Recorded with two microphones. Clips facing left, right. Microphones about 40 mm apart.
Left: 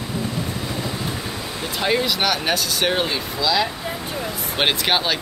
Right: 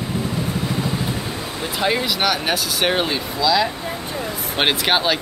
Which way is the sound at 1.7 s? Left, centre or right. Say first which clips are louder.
Even; centre.